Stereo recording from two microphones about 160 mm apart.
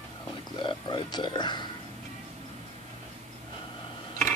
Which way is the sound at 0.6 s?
30° left (ahead or behind).